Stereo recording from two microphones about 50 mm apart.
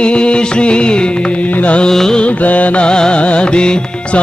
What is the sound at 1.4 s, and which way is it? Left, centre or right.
Music, left.